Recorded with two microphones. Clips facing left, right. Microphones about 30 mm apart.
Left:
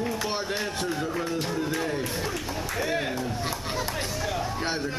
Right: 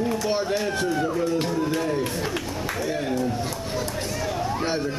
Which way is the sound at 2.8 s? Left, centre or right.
Centre.